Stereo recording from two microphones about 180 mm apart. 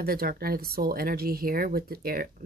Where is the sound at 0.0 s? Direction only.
55° right (ahead or behind).